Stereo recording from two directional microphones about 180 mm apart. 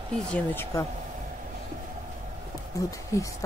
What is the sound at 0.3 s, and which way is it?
Speech, 10° left (ahead or behind).